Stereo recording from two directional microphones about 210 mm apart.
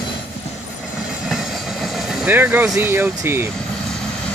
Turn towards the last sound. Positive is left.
turn(degrees=-10)  # may be behind; listen again after turning